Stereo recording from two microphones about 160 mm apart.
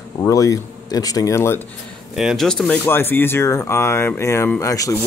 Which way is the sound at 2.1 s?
Centre (ahead or behind).